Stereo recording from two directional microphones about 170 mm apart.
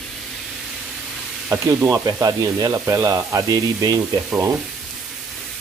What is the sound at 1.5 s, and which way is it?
Speech, 10° right (ahead or behind).